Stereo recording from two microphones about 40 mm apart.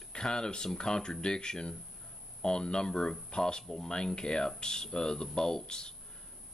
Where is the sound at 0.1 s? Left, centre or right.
Centre.